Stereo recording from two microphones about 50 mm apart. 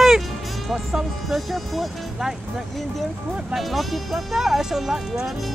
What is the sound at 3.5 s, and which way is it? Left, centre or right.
Speech, centre.